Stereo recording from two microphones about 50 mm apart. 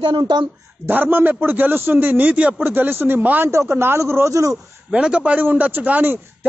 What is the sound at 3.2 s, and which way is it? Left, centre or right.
Speech, right.